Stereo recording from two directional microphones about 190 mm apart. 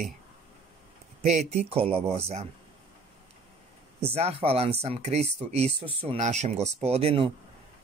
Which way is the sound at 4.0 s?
30° right (ahead or behind).